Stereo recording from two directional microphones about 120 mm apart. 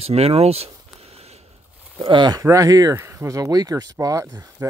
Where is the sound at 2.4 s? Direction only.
25° right (ahead or behind).